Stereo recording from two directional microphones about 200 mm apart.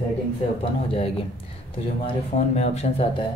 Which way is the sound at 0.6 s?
30° left (ahead or behind).